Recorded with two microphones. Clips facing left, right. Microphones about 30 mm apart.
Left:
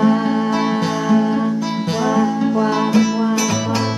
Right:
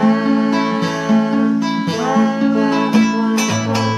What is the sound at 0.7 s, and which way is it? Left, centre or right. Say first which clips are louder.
Music: even; centre.